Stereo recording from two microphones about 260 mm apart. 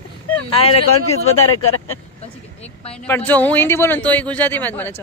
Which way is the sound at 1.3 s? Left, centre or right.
Left.